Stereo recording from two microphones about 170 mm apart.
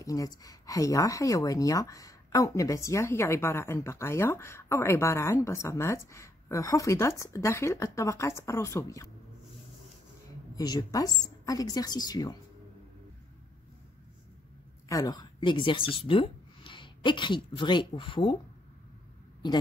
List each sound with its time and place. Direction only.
0.0 s speech: 20° left (ahead or behind)
10.5 s a woman's voice: 25° left (ahead or behind)
14.9 s a woman's voice: 20° left (ahead or behind)